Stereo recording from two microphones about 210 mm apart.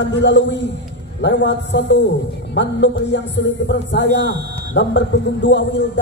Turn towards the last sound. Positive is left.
turn(degrees=60)  # may be behind; listen again after turning